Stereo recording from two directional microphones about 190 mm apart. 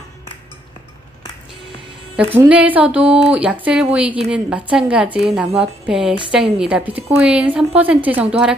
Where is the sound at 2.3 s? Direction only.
10° right (ahead or behind).